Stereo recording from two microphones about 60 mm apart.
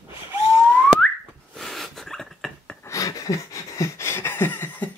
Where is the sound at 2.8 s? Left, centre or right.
Left.